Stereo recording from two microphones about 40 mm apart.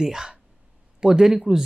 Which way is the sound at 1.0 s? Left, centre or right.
Centre.